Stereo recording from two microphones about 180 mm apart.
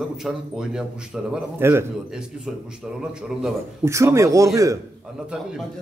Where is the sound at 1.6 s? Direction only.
15° right (ahead or behind).